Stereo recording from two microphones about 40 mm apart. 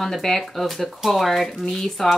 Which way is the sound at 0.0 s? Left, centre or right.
Centre.